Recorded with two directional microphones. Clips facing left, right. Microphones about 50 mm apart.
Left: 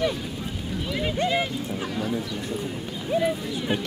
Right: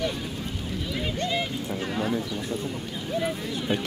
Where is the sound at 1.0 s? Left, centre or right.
Centre.